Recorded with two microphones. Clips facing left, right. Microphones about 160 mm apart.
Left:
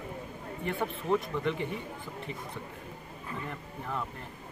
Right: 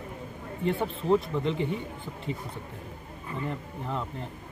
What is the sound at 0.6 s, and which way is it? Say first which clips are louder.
Speech: right 5 dB; 30° right (ahead or behind).